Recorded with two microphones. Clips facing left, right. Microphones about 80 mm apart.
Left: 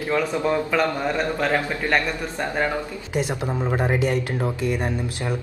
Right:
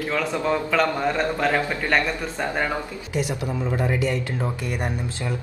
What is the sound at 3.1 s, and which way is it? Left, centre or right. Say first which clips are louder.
Speech: left 1 dB; left.